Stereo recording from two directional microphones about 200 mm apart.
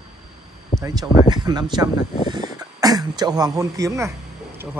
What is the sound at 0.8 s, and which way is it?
Speech, 15° right (ahead or behind).